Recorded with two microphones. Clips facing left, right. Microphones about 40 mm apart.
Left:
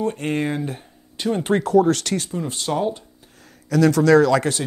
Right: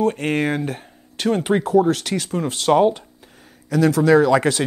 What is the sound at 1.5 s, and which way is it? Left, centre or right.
Speech, centre.